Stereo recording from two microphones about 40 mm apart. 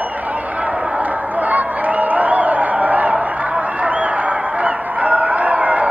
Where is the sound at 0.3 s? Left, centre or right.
Right.